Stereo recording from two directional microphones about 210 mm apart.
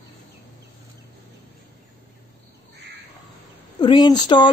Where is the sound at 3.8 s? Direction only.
20° left (ahead or behind).